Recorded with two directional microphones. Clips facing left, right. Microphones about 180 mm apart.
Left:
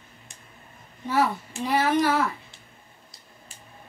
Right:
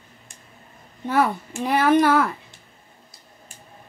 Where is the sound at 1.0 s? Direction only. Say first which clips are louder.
Right 3 dB; 55° right (ahead or behind).